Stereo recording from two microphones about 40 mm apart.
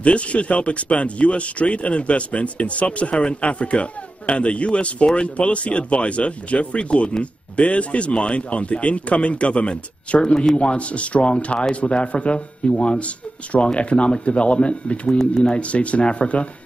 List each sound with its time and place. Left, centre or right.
0.0 s speech: left
10.2 s speech: centre
10.6 s speech: left